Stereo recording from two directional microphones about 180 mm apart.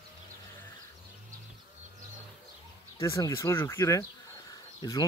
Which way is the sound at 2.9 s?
15° left (ahead or behind).